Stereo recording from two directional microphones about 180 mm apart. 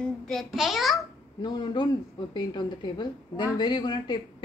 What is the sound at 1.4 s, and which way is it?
A woman's voice, 25° left (ahead or behind).